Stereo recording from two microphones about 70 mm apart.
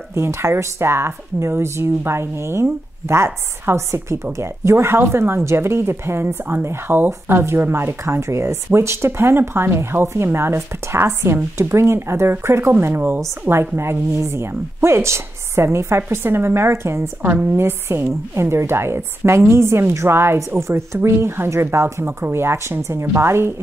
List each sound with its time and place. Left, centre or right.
0.1 s a woman's voice: right